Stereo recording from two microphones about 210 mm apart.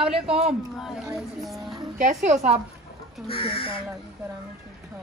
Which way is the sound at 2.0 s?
35° right (ahead or behind).